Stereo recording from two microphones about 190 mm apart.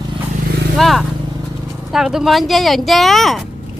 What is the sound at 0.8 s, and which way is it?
Speech, centre (ahead or behind).